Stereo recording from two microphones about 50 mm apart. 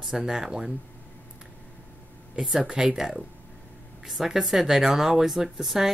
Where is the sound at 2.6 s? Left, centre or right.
Centre.